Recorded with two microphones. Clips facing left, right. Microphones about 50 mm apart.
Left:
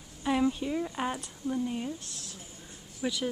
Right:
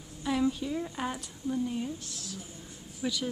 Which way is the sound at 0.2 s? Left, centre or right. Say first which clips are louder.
Left 1 dB; left.